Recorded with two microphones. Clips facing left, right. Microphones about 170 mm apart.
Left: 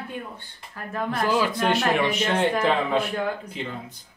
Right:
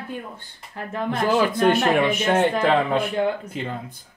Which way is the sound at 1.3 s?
50° right (ahead or behind).